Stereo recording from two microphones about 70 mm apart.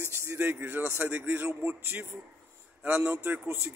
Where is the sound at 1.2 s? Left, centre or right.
Right.